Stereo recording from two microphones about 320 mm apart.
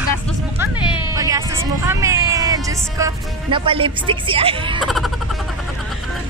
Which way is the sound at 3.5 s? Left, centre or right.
Centre.